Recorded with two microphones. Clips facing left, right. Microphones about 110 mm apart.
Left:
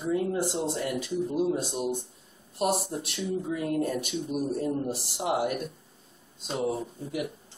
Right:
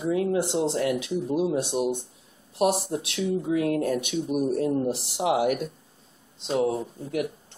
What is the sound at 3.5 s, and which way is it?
Speech, 80° right.